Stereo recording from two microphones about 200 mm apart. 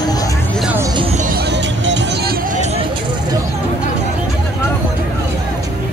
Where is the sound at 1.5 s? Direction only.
60° right (ahead or behind).